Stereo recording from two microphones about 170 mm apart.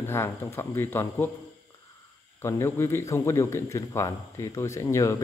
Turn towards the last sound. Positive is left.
turn(degrees=15)  # may be behind; listen again after turning